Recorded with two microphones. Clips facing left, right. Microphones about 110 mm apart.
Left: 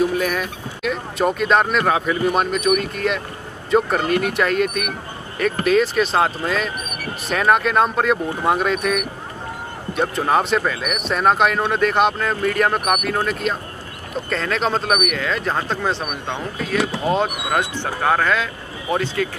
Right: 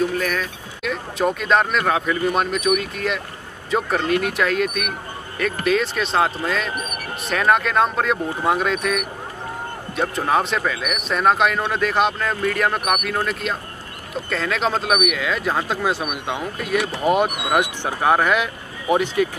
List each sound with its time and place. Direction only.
0.1 s speech: 10° left (ahead or behind); by 19.2 s 15° right (ahead or behind)